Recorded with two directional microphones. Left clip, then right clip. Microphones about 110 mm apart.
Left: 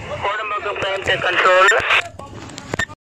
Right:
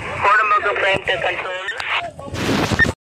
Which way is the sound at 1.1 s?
30° left (ahead or behind).